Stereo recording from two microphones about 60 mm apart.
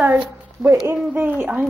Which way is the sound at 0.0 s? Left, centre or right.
Right.